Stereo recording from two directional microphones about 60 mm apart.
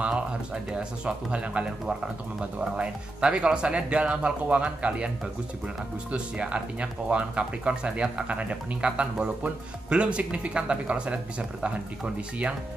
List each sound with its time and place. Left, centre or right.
0.7 s speech: centre
6.1 s speech: centre